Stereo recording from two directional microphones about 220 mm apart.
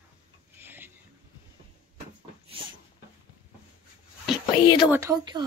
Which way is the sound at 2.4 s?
25° right (ahead or behind).